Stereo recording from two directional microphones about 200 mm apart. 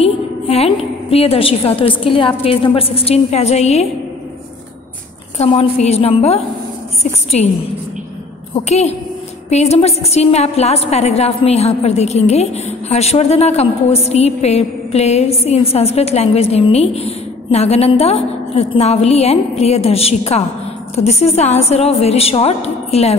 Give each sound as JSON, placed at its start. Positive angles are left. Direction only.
{"t": 0.0, "sound": "a woman's voice", "side_deg": 30}
{"t": 5.4, "sound": "a woman's voice", "side_deg": 30}
{"t": 8.5, "sound": "a woman's voice", "side_deg": 30}